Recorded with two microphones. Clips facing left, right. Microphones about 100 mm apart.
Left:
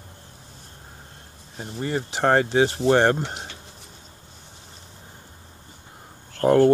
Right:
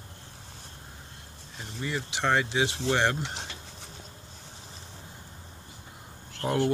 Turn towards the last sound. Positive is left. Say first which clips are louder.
# left 11 dB
turn(degrees=45)  # may be behind; listen again after turning